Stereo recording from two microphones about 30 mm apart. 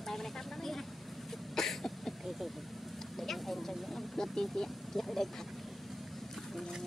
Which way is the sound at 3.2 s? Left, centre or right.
Centre.